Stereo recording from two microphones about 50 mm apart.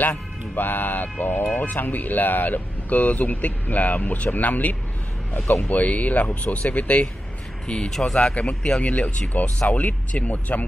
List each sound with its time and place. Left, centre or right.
0.1 s speech: left
7.6 s speech: centre